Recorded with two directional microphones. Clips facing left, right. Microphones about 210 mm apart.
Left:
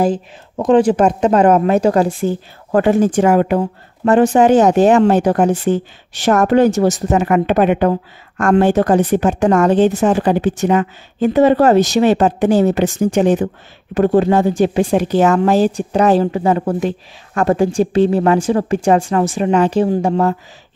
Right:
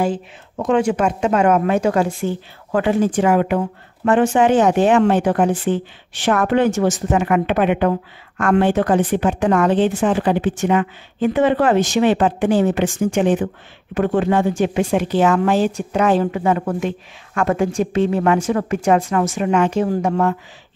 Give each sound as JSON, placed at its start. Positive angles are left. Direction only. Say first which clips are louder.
{"t": 0.0, "sound": "speech", "louder": "left 4 dB", "side_deg": 35}